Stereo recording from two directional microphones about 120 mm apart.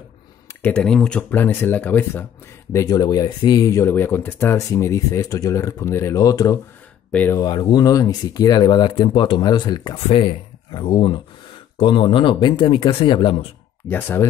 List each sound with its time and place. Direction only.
0.6 s speech: 10° left (ahead or behind)
2.7 s speech: 30° left (ahead or behind)
7.1 s speech: 15° left (ahead or behind)
7.3 s speech: 35° left (ahead or behind)
9.9 s speech: 55° left (ahead or behind)
13.8 s speech: 15° left (ahead or behind)